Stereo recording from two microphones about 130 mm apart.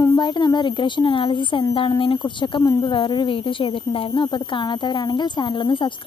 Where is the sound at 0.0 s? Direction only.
30° left (ahead or behind).